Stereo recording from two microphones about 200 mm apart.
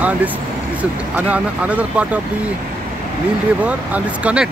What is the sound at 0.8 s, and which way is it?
Speech, 5° right (ahead or behind).